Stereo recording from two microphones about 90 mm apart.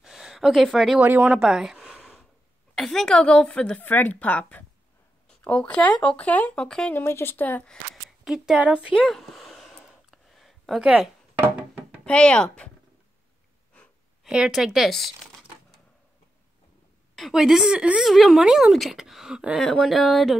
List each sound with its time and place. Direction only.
0.0 s a sound: 5° right (ahead or behind)
1.0 s a woman's voice: 20° right (ahead or behind)
1.4 s a sound: 5° right (ahead or behind)
2.7 s a woman's voice: 5° left (ahead or behind)
6.9 s speech: 25° left (ahead or behind)
8.2 s a woman's voice: 5° right (ahead or behind)
9.1 s a sound: centre (ahead or behind)
10.8 s a woman's voice: 10° right (ahead or behind)
12.0 s speech: 10° left (ahead or behind)
14.2 s speech: 5° right (ahead or behind)
17.1 s speech: centre (ahead or behind)